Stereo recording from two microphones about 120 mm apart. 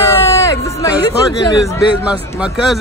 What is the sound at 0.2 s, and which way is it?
Hubbub, 25° left (ahead or behind).